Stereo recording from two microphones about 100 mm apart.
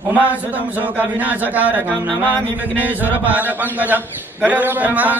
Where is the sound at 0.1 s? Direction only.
15° right (ahead or behind).